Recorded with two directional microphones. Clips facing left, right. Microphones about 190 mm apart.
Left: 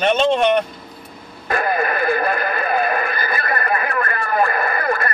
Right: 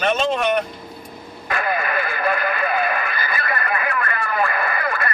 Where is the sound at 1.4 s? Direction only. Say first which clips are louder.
Left 4 dB; 40° left (ahead or behind).